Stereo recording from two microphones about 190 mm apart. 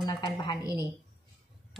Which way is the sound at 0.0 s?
25° left (ahead or behind).